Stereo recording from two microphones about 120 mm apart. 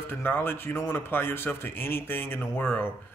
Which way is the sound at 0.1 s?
15° left (ahead or behind).